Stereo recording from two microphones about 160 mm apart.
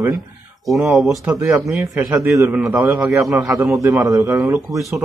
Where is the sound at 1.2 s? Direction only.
20° right (ahead or behind).